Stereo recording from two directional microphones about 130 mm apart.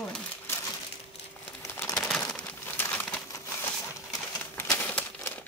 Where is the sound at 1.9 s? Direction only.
5° left (ahead or behind).